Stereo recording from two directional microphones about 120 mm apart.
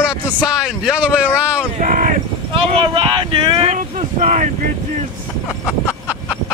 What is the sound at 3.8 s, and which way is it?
Speech, 90° right.